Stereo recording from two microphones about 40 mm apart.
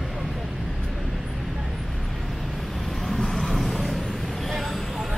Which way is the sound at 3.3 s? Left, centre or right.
Centre.